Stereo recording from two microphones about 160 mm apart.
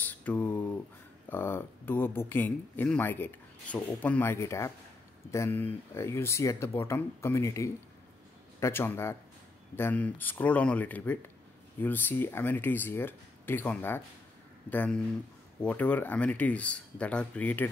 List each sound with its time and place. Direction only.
0.0 s speech: 10° left (ahead or behind)